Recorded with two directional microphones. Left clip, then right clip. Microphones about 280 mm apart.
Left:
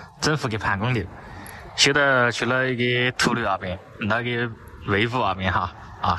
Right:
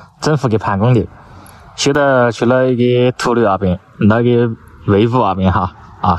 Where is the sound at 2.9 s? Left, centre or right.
Centre.